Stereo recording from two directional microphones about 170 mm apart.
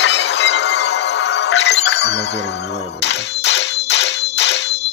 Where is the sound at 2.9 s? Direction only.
90° left.